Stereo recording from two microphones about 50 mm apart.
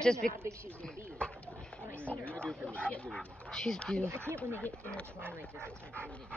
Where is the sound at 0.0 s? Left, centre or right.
Centre.